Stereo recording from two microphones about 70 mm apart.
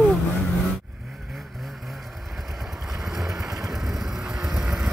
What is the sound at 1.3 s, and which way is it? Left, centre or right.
Vehicle, centre.